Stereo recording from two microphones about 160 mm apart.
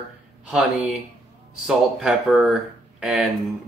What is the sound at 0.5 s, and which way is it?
Speech, 5° right (ahead or behind).